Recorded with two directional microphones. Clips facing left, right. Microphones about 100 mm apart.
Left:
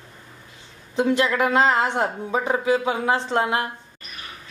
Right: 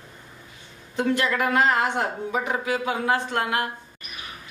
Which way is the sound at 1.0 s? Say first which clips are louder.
Left 3 dB; 20° left (ahead or behind).